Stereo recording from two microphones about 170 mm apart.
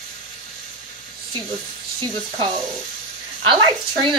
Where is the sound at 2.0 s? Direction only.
25° right (ahead or behind).